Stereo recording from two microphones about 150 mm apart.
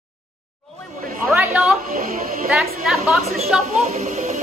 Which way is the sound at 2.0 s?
65° right (ahead or behind).